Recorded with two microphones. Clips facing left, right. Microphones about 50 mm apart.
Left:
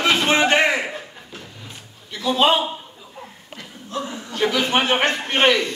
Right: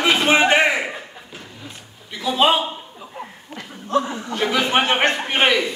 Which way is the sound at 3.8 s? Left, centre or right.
Right.